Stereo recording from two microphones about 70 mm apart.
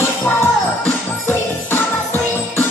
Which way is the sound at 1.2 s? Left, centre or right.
Left.